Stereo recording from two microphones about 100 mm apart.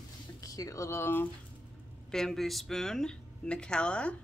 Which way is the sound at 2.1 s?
5° left (ahead or behind).